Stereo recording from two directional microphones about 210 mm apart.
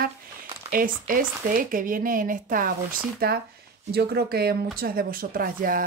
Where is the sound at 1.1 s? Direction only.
40° right (ahead or behind).